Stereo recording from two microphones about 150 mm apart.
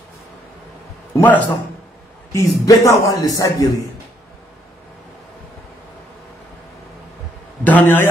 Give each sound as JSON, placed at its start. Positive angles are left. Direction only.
{"t": 1.1, "sound": "a man's voice", "side_deg": 10}
{"t": 7.6, "sound": "a man's voice", "side_deg": 10}